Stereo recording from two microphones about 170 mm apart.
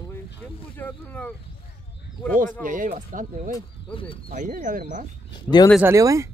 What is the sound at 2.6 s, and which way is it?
Speech, 50° right (ahead or behind).